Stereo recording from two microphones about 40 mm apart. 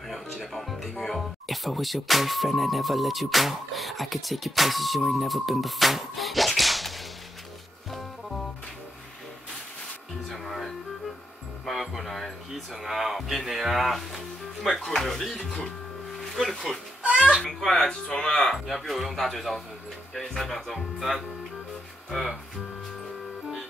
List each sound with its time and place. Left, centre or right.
0.4 s speech: centre
10.3 s music: centre
12.8 s speech: centre
17.6 s speech: centre
18.7 s speech: centre